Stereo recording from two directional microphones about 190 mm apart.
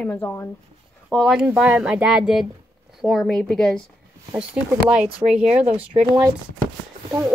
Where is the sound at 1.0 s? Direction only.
Centre (ahead or behind).